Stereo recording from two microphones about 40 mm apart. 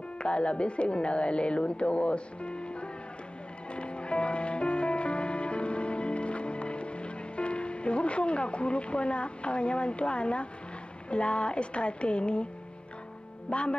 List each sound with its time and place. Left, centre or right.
0.2 s a woman's voice: left
3.7 s music: left
11.1 s a woman's voice: left
13.5 s a woman's voice: left